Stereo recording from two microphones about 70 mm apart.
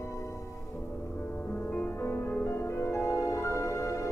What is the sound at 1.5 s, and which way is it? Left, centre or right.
Music, left.